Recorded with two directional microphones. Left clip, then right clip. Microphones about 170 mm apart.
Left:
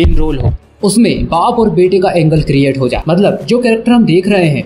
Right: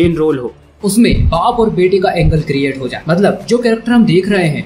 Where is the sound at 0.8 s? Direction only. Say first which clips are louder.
Left 2 dB; 35° left (ahead or behind).